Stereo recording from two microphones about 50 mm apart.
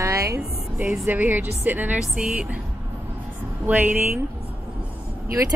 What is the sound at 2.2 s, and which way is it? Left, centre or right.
Speech, right.